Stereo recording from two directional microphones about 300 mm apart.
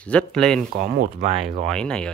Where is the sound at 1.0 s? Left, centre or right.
Right.